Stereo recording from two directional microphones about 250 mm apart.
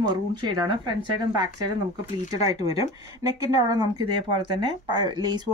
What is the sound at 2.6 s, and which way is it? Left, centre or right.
Speech, left.